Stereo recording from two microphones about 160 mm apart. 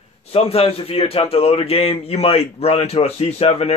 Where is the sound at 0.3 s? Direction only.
40° left (ahead or behind).